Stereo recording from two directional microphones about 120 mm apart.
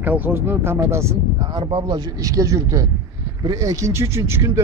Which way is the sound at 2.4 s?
25° right (ahead or behind).